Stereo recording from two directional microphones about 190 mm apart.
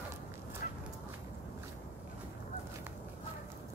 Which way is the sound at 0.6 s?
50° left (ahead or behind).